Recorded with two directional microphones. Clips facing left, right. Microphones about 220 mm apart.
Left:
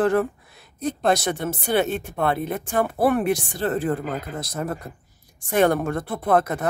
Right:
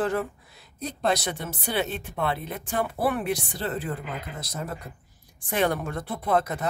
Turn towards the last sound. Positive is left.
turn(degrees=55)  # may be behind; listen again after turning